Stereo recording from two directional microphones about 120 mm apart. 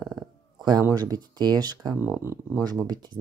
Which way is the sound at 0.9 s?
30° right (ahead or behind).